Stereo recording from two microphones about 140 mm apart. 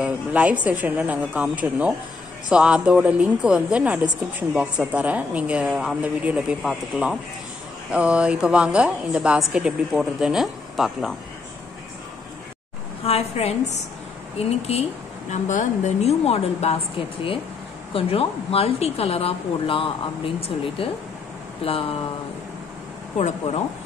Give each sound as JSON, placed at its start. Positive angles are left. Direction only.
{"t": 0.0, "sound": "a woman's voice", "side_deg": -10}
{"t": 13.0, "sound": "a woman's voice", "side_deg": 45}
{"t": 17.9, "sound": "a woman's voice", "side_deg": 40}
{"t": 23.1, "sound": "a woman's voice", "side_deg": 50}